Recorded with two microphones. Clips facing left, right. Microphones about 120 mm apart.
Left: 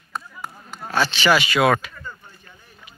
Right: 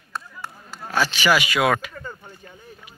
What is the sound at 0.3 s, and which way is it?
Chop, 10° left (ahead or behind).